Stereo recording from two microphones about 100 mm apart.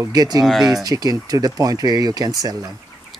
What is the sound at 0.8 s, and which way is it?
Speech, 40° right (ahead or behind).